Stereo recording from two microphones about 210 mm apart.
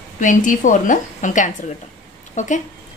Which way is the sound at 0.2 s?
40° left (ahead or behind).